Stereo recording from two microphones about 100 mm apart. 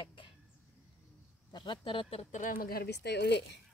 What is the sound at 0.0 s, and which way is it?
Chicken, 55° left (ahead or behind).